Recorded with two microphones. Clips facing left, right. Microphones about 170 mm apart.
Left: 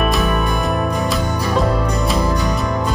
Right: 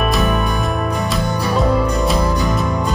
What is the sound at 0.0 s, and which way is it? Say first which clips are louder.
Music: even; centre (ahead or behind).